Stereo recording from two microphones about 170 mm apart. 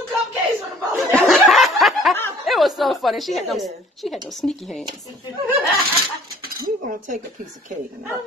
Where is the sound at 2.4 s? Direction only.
Centre (ahead or behind).